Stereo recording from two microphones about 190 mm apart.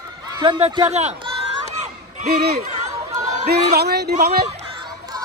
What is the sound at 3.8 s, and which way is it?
Speech, 55° right (ahead or behind).